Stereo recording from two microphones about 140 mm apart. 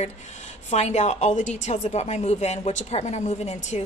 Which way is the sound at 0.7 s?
55° left (ahead or behind).